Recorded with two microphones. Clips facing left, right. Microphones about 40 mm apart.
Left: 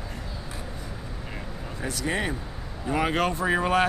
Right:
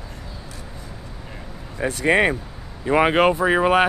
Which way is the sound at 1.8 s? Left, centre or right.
Right.